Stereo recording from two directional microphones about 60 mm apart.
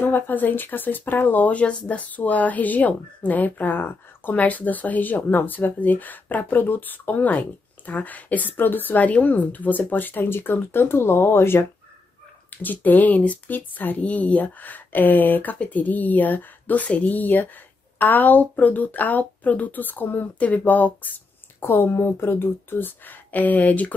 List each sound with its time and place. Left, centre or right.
0.0 s speech: left
12.4 s speech: left